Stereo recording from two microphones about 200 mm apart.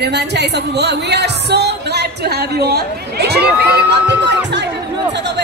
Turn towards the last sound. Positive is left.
turn(degrees=-60)  # may be behind; listen again after turning